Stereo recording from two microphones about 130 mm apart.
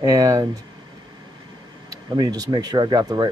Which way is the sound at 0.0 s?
25° right (ahead or behind).